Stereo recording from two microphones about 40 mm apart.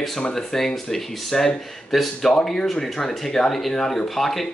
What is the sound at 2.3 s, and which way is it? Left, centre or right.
Speech, centre.